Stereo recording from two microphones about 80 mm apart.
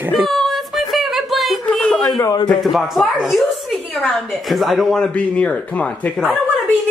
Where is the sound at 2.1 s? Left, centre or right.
Left.